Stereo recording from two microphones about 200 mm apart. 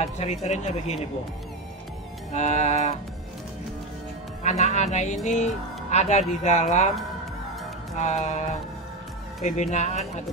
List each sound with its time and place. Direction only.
0.0 s speech: 35° left (ahead or behind)
2.3 s speech: 35° left (ahead or behind)
4.4 s speech: 35° left (ahead or behind)
8.0 s speech: 35° left (ahead or behind)